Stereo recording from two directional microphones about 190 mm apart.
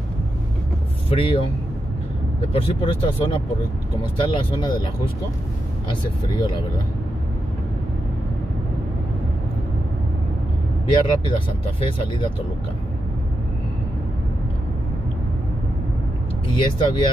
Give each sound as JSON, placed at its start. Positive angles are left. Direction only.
{"t": 1.1, "sound": "speech", "side_deg": 30}
{"t": 2.5, "sound": "speech", "side_deg": 30}
{"t": 6.2, "sound": "speech", "side_deg": 25}
{"t": 10.9, "sound": "speech", "side_deg": 25}
{"t": 16.4, "sound": "speech", "side_deg": 25}